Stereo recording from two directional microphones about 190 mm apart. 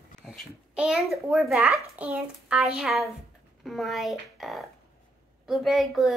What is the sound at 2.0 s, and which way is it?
A woman's voice, 5° right (ahead or behind).